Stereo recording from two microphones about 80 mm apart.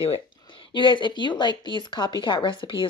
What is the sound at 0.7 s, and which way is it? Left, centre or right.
Speech, left.